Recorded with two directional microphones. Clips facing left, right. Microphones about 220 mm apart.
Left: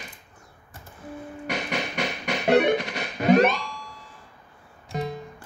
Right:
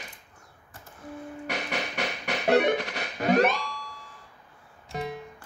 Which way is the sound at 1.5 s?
10° left (ahead or behind).